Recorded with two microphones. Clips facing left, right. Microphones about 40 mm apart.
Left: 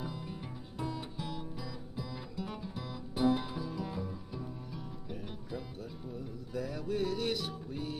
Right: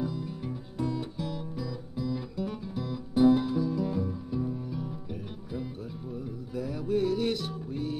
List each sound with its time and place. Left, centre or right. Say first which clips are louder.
0.0 s music: right 8 dB; centre